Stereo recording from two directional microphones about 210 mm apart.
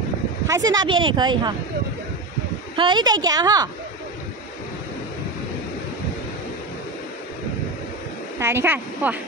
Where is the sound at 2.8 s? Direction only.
20° right (ahead or behind).